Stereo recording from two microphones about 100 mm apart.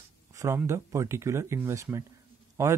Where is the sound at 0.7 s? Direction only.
30° right (ahead or behind).